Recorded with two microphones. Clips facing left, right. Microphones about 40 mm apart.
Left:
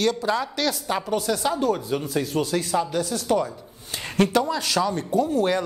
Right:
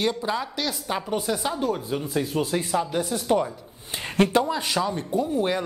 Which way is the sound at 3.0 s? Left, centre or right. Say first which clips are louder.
Even; right.